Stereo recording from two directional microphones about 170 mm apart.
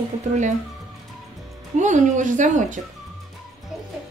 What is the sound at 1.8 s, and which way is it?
Speech, 45° right (ahead or behind).